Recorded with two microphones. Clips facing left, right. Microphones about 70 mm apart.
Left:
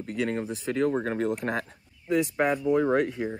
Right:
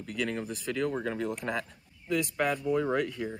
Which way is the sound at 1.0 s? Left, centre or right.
Left.